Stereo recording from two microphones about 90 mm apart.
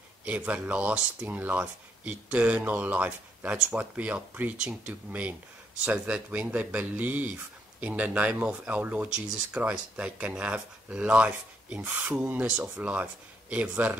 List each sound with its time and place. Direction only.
0.2 s speech: 15° right (ahead or behind)